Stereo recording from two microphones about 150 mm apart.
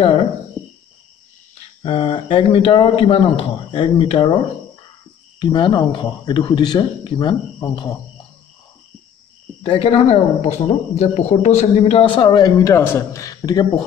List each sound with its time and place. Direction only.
0.0 s a sound: 40° left (ahead or behind)
1.8 s speech: 40° left (ahead or behind)
5.4 s speech: 30° left (ahead or behind)
9.7 s speech: 40° left (ahead or behind)